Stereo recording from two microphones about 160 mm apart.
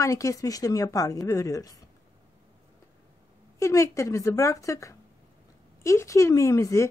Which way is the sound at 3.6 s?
20° left (ahead or behind).